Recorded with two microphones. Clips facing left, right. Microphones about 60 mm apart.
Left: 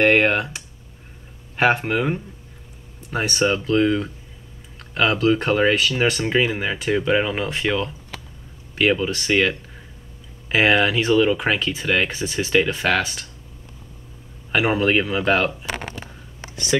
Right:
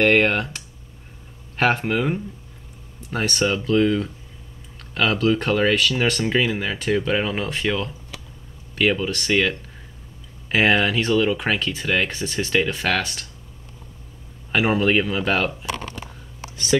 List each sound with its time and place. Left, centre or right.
0.0 s speech: centre
1.6 s speech: centre
14.5 s speech: centre